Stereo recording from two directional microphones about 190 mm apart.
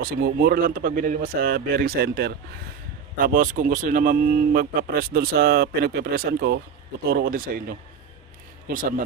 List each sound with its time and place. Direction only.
0.0 s speech: 55° right (ahead or behind)